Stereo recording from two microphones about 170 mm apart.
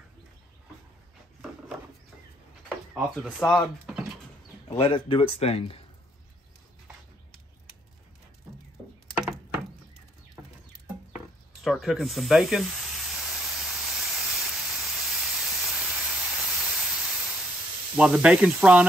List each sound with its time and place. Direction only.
2.9 s speech: centre (ahead or behind)
4.6 s speech: 35° left (ahead or behind)
9.1 s a sound: 5° right (ahead or behind)
11.1 s snake: centre (ahead or behind)
17.9 s speech: 5° right (ahead or behind)